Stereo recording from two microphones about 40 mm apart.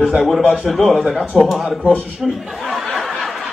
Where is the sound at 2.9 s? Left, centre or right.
Centre.